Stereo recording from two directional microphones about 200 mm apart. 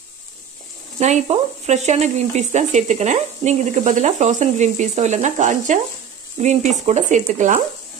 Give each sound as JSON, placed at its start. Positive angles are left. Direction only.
{"t": 0.9, "sound": "speech", "side_deg": -35}